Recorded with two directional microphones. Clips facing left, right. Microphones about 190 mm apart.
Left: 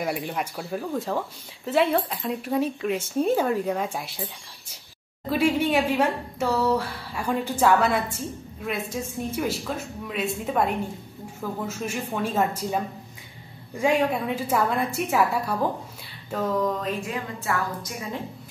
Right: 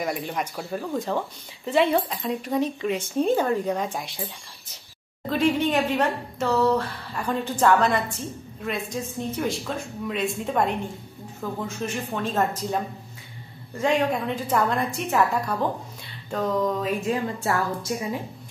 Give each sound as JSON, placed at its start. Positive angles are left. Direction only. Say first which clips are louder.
{"t": 0.0, "sound": "speech", "louder": "even", "side_deg": 5}
{"t": 5.3, "sound": "speech", "louder": "even", "side_deg": 10}
{"t": 17.0, "sound": "a woman's voice", "louder": "right 6 dB", "side_deg": -30}